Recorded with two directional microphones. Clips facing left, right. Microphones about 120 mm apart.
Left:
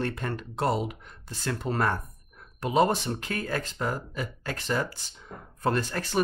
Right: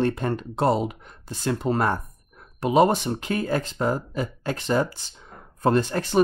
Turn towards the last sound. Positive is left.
turn(degrees=-20)  # may be behind; listen again after turning